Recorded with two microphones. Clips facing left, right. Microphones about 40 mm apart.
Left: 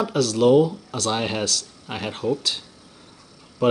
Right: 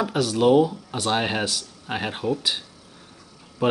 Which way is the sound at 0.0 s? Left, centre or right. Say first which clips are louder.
Left 1 dB; centre.